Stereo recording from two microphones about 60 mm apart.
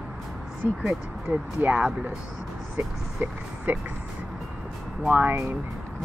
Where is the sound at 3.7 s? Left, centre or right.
Right.